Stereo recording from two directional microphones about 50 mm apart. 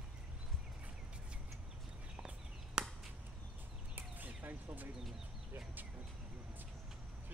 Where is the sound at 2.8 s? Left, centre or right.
Centre.